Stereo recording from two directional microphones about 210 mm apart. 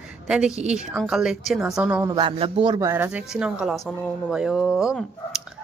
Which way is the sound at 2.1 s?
25° right (ahead or behind).